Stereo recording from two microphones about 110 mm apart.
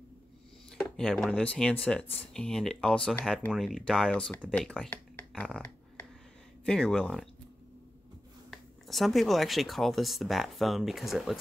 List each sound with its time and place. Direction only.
0.7 s speech: 5° left (ahead or behind)
4.5 s a sound: 10° left (ahead or behind)
6.6 s speech: 5° left (ahead or behind)
8.5 s speech: centre (ahead or behind)